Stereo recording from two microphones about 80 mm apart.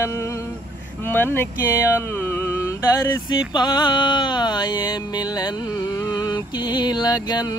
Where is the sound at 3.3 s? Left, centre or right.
Left.